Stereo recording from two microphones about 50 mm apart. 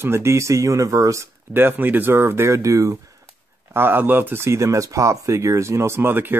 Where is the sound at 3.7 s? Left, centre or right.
Right.